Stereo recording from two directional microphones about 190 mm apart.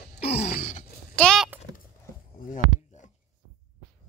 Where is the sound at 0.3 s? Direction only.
40° left (ahead or behind).